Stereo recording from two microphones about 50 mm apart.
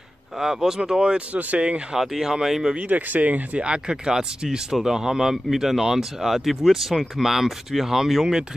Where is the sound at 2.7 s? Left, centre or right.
Right.